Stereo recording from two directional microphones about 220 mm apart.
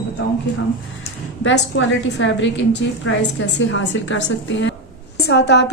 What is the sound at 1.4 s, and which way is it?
A woman's voice, 60° left (ahead or behind).